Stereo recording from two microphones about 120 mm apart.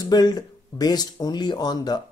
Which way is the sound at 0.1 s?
35° left (ahead or behind).